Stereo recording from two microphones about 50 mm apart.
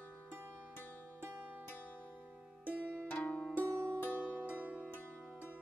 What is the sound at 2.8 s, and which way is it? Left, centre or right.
Pizzicato, left.